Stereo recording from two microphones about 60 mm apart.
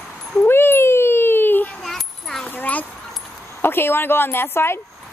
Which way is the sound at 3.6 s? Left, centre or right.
Left.